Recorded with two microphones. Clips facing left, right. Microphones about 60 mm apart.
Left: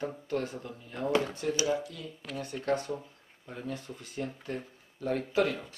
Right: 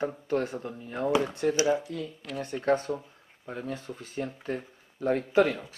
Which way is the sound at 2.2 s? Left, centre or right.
Centre.